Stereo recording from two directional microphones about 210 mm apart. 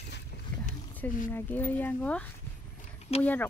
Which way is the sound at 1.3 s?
10° left (ahead or behind).